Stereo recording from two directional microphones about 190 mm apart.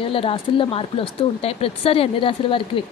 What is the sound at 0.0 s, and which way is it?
Speech, 30° left (ahead or behind).